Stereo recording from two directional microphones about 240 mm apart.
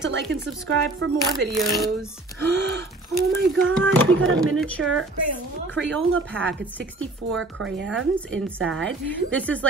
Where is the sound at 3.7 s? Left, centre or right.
Centre.